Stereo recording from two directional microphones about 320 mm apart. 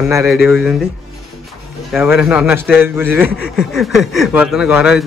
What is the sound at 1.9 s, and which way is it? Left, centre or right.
A man's voice, centre.